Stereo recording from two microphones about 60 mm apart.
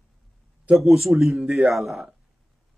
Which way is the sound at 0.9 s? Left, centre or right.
Centre.